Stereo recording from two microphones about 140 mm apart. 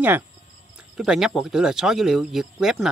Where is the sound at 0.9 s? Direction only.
5° right (ahead or behind).